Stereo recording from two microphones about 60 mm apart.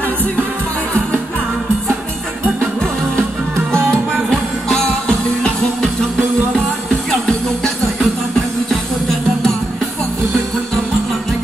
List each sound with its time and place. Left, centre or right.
3.2 s music: right
4.3 s music: centre